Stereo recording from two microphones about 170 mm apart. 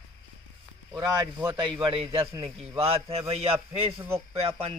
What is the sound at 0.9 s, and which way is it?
Speech, 20° right (ahead or behind).